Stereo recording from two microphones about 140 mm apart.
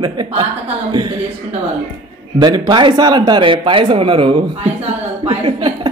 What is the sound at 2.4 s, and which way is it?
A woman's voice, 30° right (ahead or behind).